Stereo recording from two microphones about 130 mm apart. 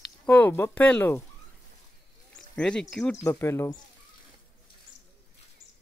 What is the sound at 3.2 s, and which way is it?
Speech, 20° left (ahead or behind).